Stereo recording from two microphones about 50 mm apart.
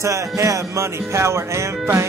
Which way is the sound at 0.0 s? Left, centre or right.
Right.